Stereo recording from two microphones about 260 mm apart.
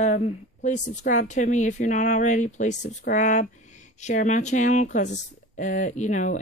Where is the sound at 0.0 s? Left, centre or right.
Left.